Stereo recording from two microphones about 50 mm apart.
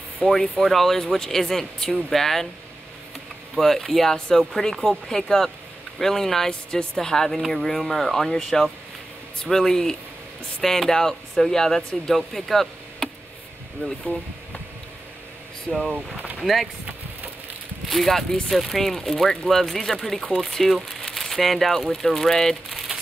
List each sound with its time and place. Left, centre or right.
0.3 s speech: centre
3.5 s speech: centre
13.8 s speech: left
15.7 s speech: centre
17.8 s speech: centre